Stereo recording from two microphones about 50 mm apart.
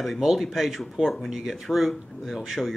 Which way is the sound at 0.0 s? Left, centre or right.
Centre.